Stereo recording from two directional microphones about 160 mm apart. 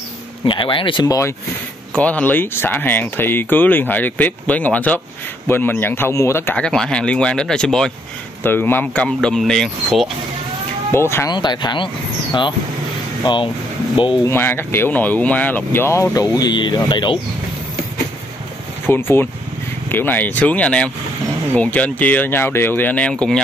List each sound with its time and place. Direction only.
0.5 s speech: 30° left (ahead or behind)
2.0 s speech: 10° left (ahead or behind)
10.9 s speech: 15° left (ahead or behind)
11.3 s speech: 25° left (ahead or behind)
13.2 s speech: 30° left (ahead or behind)
14.2 s speech: 15° left (ahead or behind); by 17.2 s 30° left (ahead or behind)
18.9 s speech: 15° left (ahead or behind)